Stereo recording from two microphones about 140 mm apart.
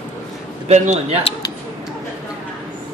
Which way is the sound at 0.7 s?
55° right (ahead or behind).